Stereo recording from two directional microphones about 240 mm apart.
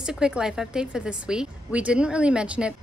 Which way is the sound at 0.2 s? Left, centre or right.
Centre.